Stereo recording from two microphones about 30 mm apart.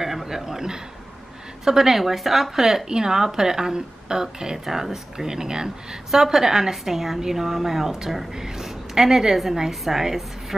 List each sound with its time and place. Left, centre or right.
0.0 s a sound: centre
1.6 s a woman's voice: centre
4.6 s a woman's voice: centre